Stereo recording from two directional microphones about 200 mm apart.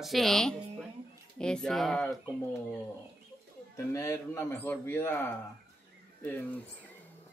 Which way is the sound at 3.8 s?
15° left (ahead or behind).